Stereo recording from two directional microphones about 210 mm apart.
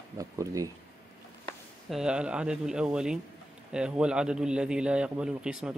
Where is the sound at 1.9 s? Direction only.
5° right (ahead or behind).